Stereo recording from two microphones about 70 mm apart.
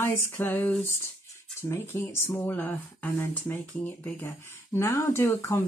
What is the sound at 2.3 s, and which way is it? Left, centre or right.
Speech, left.